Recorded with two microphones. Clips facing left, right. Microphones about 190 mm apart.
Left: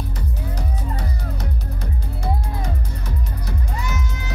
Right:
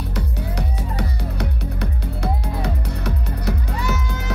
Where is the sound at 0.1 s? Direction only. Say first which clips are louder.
Right 3 dB; 70° right (ahead or behind).